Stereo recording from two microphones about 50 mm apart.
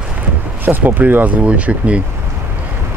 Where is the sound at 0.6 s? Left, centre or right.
Right.